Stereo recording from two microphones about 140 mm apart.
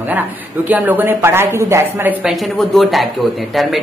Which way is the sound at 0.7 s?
10° right (ahead or behind).